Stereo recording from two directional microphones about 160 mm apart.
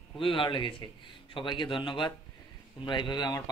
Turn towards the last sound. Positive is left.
turn(degrees=25)  # may be behind; listen again after turning